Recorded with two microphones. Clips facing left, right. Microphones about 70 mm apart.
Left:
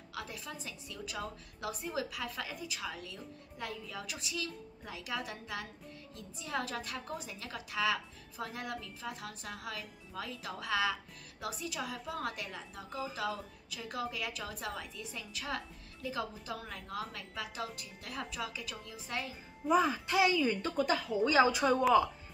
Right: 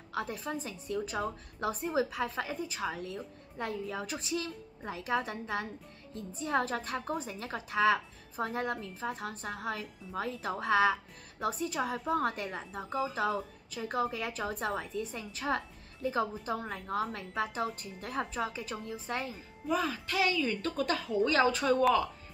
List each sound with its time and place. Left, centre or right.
0.1 s a woman's voice: right
19.7 s a woman's voice: centre